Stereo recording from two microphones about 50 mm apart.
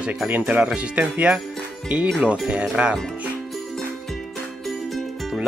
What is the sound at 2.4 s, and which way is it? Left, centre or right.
Speech, centre.